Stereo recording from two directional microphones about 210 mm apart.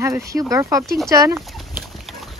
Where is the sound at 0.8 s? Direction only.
Centre (ahead or behind).